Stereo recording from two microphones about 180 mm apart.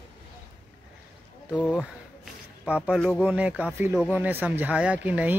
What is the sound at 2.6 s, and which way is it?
A man's voice, 5° right (ahead or behind).